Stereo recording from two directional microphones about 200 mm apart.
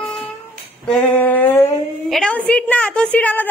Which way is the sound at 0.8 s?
5° left (ahead or behind).